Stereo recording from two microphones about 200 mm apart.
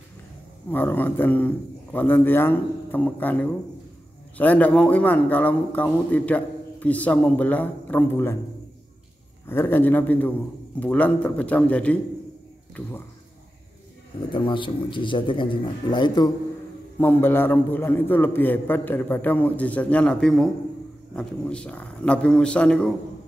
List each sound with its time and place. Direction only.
0.7 s a man's voice: 10° left (ahead or behind)
9.5 s a man's voice: 10° left (ahead or behind)
14.3 s a man's voice: 25° left (ahead or behind)
17.0 s a man's voice: 10° left (ahead or behind)